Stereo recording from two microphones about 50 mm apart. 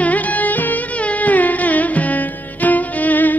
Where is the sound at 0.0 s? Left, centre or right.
Left.